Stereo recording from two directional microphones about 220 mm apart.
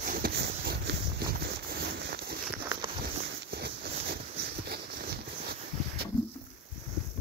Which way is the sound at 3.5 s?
45° right (ahead or behind).